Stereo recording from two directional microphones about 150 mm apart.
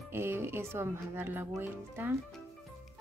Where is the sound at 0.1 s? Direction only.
15° right (ahead or behind).